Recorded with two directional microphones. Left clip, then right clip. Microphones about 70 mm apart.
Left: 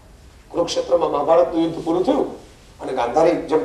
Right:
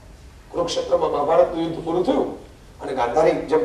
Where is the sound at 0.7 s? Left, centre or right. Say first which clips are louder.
Left 1 dB; left.